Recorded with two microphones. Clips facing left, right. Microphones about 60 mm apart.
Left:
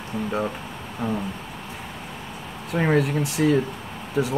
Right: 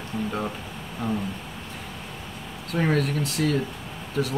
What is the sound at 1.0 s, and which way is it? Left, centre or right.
Speech, left.